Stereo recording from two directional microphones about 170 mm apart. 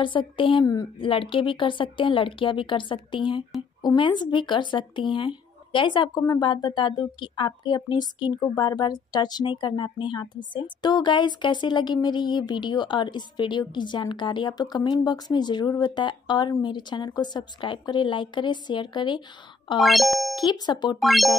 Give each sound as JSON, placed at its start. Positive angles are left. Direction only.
{"t": 0.0, "sound": "speech", "side_deg": 30}
{"t": 19.8, "sound": "speech", "side_deg": 0}
{"t": 20.5, "sound": "speech", "side_deg": 25}
{"t": 21.0, "sound": "speech", "side_deg": 0}